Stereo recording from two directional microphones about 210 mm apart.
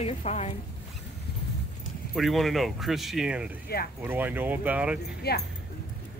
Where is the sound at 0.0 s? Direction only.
30° left (ahead or behind).